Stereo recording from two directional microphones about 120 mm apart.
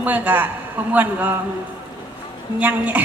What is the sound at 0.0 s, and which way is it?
A woman's voice, 15° right (ahead or behind).